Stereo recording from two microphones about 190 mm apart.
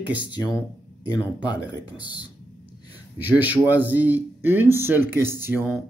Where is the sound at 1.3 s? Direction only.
20° left (ahead or behind).